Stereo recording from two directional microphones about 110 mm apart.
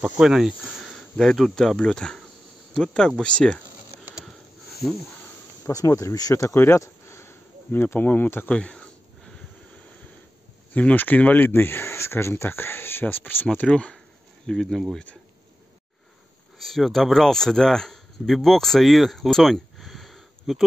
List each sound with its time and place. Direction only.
0.0 s speech: 5° right (ahead or behind)
5.7 s speech: 30° left (ahead or behind); by 9.3 s 10° left (ahead or behind)
10.7 s speech: 15° left (ahead or behind)
16.5 s speech: centre (ahead or behind)